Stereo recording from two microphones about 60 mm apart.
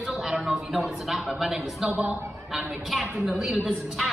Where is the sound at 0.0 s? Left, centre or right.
Centre.